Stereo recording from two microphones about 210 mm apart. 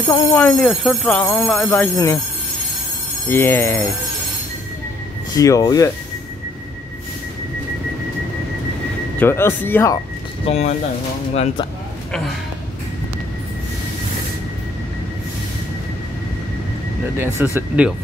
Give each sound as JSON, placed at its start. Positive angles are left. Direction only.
{"t": 0.3, "sound": "speech", "side_deg": 10}
{"t": 3.3, "sound": "speech", "side_deg": 10}
{"t": 5.3, "sound": "speech", "side_deg": 15}
{"t": 9.2, "sound": "speech", "side_deg": 10}
{"t": 10.4, "sound": "speech", "side_deg": 30}
{"t": 17.2, "sound": "speech", "side_deg": -10}